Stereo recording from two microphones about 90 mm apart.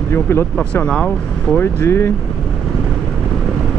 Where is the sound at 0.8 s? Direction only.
15° left (ahead or behind).